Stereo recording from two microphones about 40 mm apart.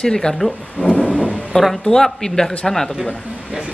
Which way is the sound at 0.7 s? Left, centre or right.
Left.